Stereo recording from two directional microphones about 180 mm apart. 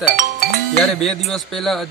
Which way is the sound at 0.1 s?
45° right (ahead or behind).